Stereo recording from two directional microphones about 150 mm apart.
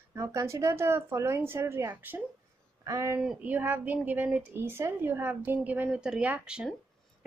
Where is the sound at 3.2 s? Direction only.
10° right (ahead or behind).